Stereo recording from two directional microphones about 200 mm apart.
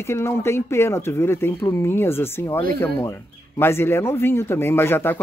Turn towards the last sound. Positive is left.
turn(degrees=10)  # may be behind; listen again after turning